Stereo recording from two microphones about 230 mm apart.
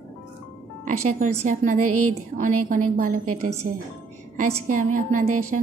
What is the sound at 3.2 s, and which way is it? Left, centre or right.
Speech, right.